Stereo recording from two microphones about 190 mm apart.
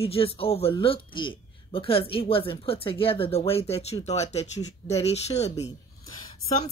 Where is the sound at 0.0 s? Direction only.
30° left (ahead or behind).